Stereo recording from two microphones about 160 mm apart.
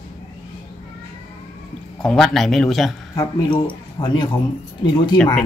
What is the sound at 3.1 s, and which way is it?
Speech, 20° left (ahead or behind).